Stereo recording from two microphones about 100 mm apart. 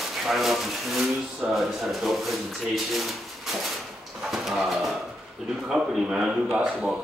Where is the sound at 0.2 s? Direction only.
Centre (ahead or behind).